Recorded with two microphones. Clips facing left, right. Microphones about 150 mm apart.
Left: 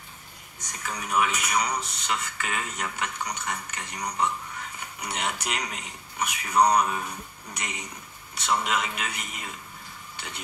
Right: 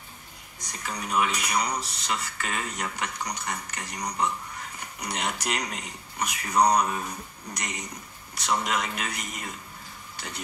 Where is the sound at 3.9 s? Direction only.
5° left (ahead or behind).